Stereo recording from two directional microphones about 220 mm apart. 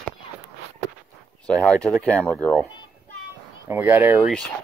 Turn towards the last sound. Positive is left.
turn(degrees=0)  # may be behind; listen again after turning